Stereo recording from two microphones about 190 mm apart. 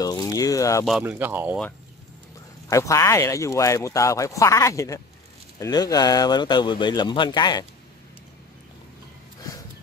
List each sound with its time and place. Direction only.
0.0 s a sound: 20° left (ahead or behind)
1.0 s speech: 10° right (ahead or behind)
2.7 s speech: 15° left (ahead or behind)